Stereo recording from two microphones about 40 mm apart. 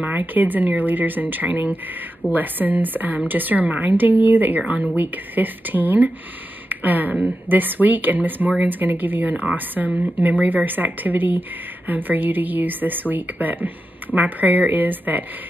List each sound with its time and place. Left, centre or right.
0.0 s speech: right